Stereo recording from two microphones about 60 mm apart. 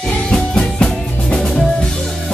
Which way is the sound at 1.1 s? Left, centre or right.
Centre.